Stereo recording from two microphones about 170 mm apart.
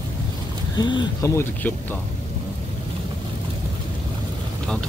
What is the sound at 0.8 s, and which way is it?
Speech, 25° left (ahead or behind).